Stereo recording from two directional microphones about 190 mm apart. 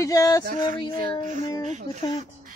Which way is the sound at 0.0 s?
15° left (ahead or behind).